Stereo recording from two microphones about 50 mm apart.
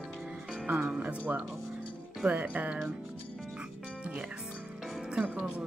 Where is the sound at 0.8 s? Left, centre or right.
Right.